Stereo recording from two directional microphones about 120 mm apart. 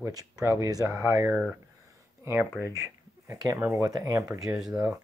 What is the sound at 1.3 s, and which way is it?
Speech, 10° right (ahead or behind).